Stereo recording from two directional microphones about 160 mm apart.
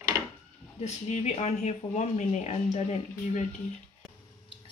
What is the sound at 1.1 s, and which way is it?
Speech, 45° left (ahead or behind).